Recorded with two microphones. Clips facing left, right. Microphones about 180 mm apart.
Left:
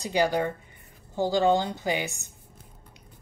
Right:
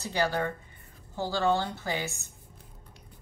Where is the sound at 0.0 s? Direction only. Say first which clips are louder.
Left 4 dB; 15° left (ahead or behind).